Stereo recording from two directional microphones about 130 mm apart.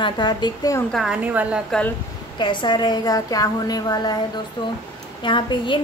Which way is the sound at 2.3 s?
35° left (ahead or behind).